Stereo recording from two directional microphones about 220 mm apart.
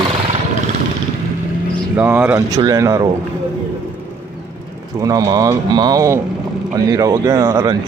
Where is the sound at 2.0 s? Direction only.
5° right (ahead or behind).